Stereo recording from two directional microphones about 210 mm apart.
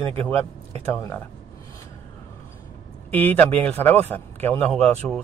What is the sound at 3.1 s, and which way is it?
Speech, 10° left (ahead or behind).